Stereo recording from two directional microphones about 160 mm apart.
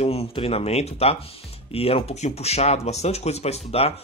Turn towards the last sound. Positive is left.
turn(degrees=40)  # may be behind; listen again after turning